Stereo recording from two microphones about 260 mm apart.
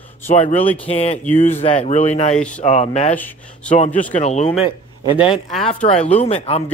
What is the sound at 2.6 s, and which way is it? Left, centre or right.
Speech, left.